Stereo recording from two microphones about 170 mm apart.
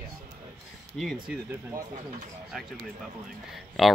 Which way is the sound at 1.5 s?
15° right (ahead or behind).